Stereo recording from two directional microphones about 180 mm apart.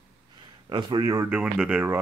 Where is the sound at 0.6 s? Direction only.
25° right (ahead or behind).